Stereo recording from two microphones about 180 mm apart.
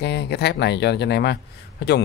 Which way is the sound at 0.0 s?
70° left (ahead or behind).